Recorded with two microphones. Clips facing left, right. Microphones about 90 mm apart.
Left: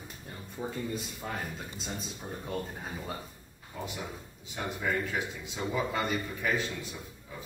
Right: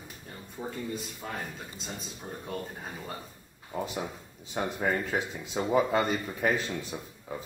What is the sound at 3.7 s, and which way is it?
Speech, 40° right (ahead or behind).